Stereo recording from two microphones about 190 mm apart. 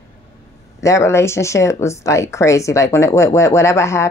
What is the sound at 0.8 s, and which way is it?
Speech, 15° left (ahead or behind).